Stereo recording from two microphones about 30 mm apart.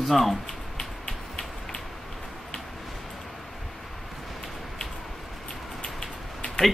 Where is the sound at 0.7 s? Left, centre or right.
Left.